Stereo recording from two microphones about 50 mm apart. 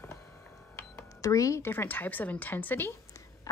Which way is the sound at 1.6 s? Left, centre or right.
Left.